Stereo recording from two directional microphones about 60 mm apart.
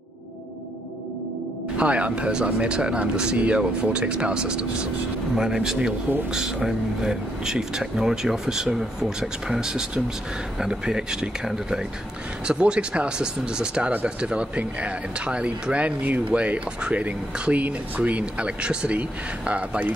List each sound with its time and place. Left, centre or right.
1.8 s speech: right